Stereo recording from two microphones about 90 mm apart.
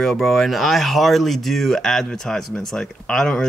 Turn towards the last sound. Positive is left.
turn(degrees=10)  # may be behind; listen again after turning